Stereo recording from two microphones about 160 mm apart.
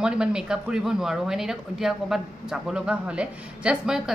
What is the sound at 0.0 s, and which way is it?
Speech, 5° right (ahead or behind).